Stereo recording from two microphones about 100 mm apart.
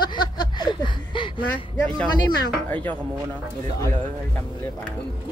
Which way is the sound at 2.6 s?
20° left (ahead or behind).